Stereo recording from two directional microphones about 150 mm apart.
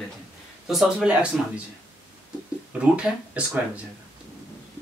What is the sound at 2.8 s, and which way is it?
Speech, 10° right (ahead or behind).